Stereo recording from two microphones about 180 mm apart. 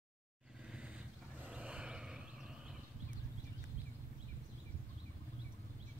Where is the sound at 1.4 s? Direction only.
5° right (ahead or behind).